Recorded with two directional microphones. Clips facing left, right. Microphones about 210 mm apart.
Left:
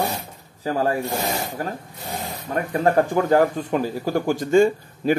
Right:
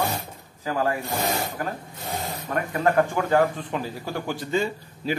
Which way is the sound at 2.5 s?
25° left (ahead or behind).